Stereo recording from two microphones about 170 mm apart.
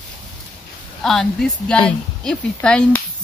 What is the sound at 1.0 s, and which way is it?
Speech, centre (ahead or behind).